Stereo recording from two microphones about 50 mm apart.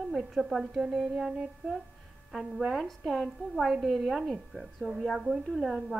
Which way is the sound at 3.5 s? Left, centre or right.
Centre.